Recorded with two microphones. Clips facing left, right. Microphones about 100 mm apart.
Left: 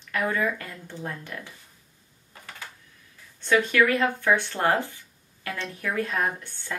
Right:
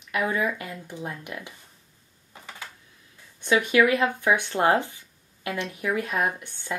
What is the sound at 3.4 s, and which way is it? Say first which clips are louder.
Speech: right 1 dB; 15° right (ahead or behind).